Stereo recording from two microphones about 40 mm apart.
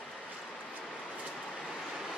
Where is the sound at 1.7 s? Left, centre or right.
Centre.